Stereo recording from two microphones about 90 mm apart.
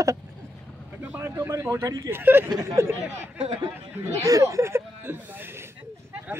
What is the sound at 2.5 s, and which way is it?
Speech, 35° right (ahead or behind).